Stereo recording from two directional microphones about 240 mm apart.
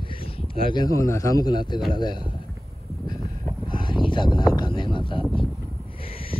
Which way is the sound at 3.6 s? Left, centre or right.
Centre.